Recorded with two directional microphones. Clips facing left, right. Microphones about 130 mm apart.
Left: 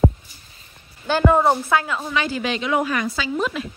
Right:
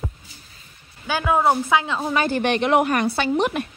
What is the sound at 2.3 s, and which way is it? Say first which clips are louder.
A woman's voice: right 4 dB; 55° right (ahead or behind).